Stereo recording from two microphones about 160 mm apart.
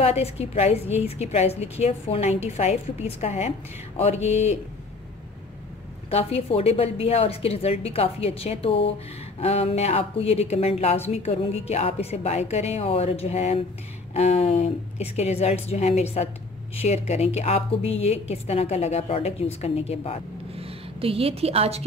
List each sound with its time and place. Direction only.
0.0 s a woman's voice: 40° left (ahead or behind)
6.0 s a woman's voice: 40° left (ahead or behind)
20.5 s a woman's voice: 35° right (ahead or behind)